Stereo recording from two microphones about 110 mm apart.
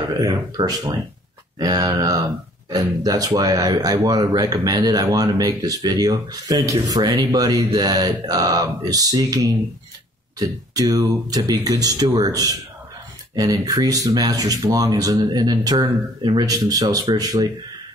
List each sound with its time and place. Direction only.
0.2 s speech: 40° right (ahead or behind)